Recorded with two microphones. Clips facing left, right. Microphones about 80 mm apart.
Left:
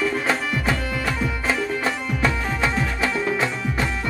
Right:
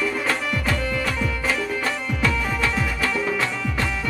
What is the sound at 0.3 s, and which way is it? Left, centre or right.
Music, left.